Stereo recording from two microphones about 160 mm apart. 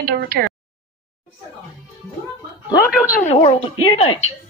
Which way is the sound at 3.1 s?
50° left (ahead or behind).